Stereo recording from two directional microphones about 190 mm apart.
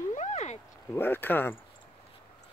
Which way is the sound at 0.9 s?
10° left (ahead or behind).